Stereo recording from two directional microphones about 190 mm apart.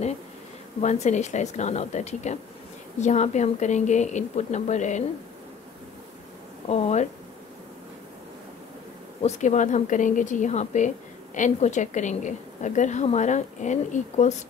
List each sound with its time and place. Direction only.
0.7 s a woman's voice: 35° left (ahead or behind)
6.7 s a woman's voice: 35° left (ahead or behind)
9.2 s a woman's voice: 40° left (ahead or behind)